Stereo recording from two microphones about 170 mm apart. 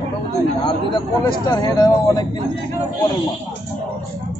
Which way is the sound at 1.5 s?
25° left (ahead or behind).